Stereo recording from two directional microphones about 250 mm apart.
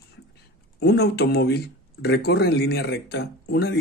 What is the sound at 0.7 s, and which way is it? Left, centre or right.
Speech, left.